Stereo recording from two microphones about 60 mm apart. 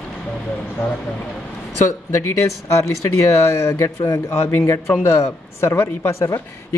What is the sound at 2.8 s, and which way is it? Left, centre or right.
Speech, left.